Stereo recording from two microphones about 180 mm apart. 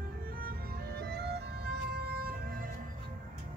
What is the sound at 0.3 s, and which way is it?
Music, 55° right (ahead or behind).